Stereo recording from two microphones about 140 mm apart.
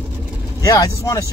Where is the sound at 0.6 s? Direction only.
25° left (ahead or behind).